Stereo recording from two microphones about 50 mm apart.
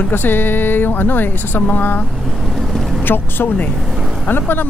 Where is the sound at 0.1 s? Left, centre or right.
Left.